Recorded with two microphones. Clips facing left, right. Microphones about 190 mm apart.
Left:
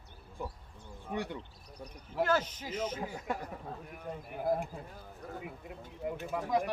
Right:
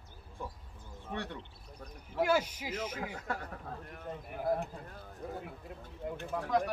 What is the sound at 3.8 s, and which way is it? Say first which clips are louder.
Speech: left 1 dB; 10° left (ahead or behind).